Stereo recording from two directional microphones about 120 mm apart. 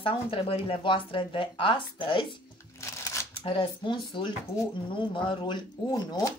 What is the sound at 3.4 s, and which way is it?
Speech, 40° left (ahead or behind).